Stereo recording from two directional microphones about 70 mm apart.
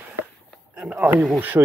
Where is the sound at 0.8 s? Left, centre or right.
Centre.